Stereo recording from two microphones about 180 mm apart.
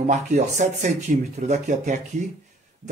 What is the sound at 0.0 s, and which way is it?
Speech, 40° right (ahead or behind).